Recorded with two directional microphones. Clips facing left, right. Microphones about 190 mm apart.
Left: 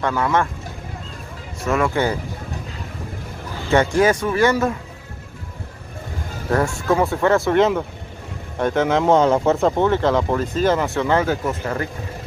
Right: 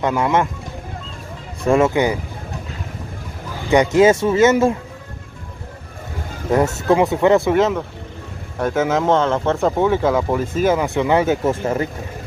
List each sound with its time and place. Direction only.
0.0 s speech: 20° right (ahead or behind)
1.6 s speech: 30° right (ahead or behind)
3.6 s speech: 15° right (ahead or behind)
6.9 s speech: 15° right (ahead or behind)
7.5 s speech: centre (ahead or behind)
9.1 s speech: 10° left (ahead or behind)
9.6 s speech: 5° right (ahead or behind); by 11.9 s 25° right (ahead or behind)